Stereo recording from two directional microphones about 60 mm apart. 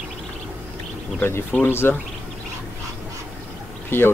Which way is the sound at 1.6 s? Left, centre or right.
Left.